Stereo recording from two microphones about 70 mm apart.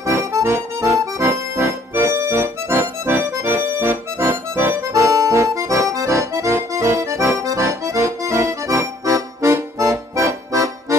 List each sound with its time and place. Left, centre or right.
0.0 s accordion: right
4.9 s accordion: right